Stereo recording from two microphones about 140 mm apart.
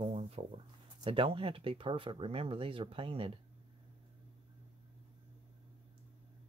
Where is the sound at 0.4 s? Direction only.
50° right (ahead or behind).